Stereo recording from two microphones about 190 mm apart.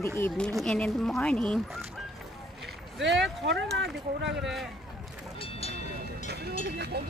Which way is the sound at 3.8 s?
70° right (ahead or behind).